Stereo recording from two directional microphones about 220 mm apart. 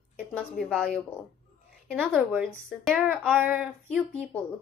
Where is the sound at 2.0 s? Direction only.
Centre (ahead or behind).